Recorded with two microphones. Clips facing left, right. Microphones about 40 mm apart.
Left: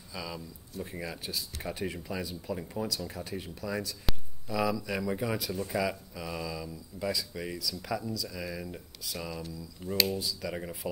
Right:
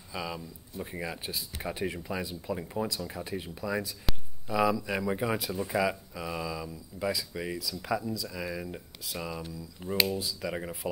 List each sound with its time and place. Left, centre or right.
0.1 s speech: right